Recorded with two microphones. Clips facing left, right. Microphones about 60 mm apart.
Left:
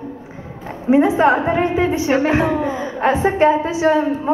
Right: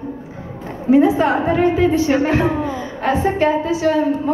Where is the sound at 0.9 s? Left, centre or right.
Left.